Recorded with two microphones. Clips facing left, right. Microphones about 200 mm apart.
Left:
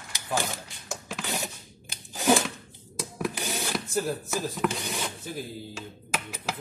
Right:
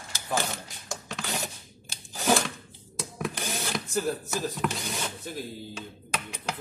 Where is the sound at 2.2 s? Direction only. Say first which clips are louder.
Left 2 dB; 15° left (ahead or behind).